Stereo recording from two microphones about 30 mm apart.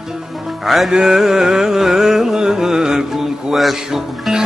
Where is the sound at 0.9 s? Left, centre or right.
Centre.